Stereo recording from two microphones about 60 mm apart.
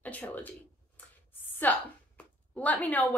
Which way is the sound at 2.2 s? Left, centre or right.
Left.